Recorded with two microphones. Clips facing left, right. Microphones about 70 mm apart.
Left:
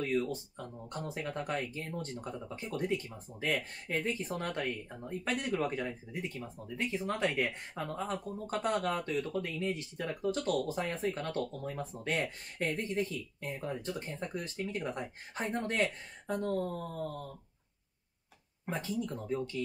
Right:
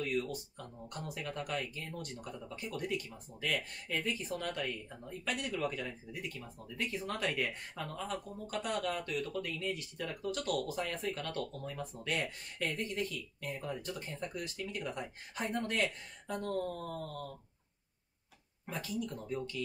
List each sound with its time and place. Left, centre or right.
0.0 s speech: left
18.7 s speech: left